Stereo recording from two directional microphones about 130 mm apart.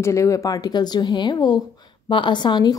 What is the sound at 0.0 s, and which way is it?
A woman's voice, 25° left (ahead or behind).